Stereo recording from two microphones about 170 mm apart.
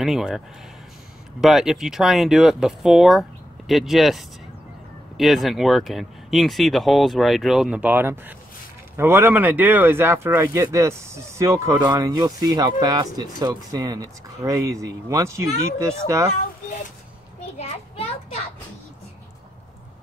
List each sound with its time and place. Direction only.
0.0 s speech: centre (ahead or behind)
1.4 s speech: centre (ahead or behind)
17.6 s children playing: 40° left (ahead or behind)